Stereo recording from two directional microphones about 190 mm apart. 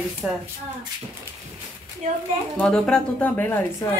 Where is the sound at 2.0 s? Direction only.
40° right (ahead or behind).